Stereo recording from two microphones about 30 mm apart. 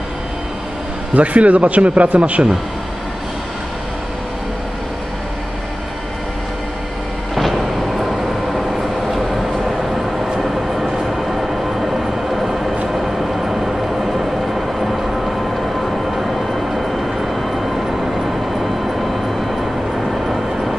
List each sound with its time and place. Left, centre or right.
1.1 s speech: right
9.1 s train: centre
10.4 s vehicle: centre